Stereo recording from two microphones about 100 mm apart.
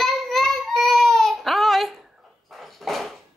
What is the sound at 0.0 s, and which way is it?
Child singing, 5° left (ahead or behind).